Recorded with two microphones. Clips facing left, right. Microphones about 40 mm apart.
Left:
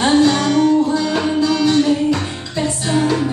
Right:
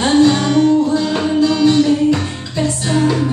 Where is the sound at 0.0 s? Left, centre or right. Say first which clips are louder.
Right 1 dB; centre.